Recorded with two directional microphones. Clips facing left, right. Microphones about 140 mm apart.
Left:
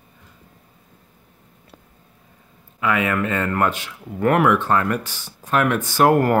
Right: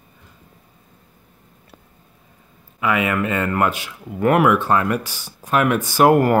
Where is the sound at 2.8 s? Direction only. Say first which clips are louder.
Right 1 dB; 10° right (ahead or behind).